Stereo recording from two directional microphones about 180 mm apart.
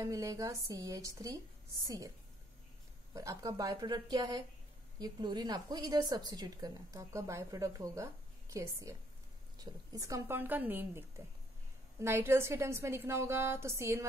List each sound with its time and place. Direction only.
0.0 s a woman's voice: 20° right (ahead or behind)